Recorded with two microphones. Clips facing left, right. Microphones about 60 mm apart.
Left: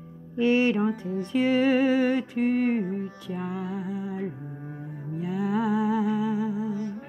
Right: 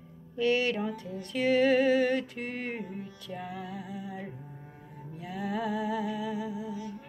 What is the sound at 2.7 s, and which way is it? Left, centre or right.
Music, left.